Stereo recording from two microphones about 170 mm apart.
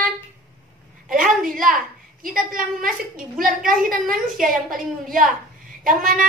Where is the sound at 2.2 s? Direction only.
55° right (ahead or behind).